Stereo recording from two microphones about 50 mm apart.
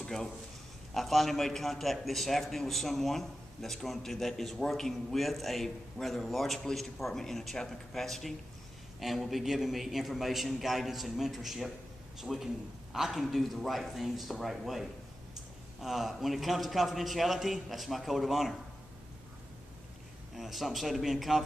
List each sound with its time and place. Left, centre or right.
0.9 s a man's voice: centre
20.3 s a man's voice: centre